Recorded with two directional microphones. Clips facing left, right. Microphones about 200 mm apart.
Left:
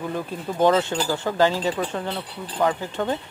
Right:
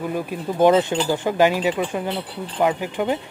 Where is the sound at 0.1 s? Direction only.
15° right (ahead or behind).